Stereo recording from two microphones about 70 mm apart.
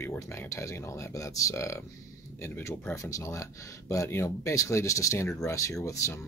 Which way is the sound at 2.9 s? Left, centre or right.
Left.